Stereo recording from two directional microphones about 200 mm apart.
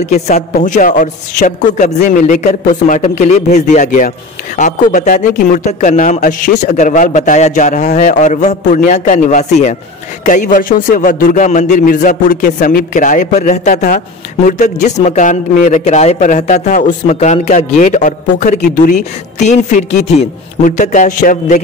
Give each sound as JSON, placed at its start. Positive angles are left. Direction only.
{"t": 0.0, "sound": "a man's voice", "side_deg": 35}